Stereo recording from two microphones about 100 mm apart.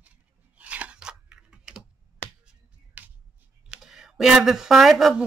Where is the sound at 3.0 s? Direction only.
15° right (ahead or behind).